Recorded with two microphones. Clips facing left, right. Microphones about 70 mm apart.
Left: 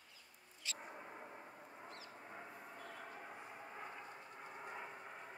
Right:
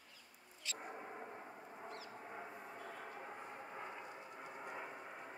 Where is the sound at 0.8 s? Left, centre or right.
Centre.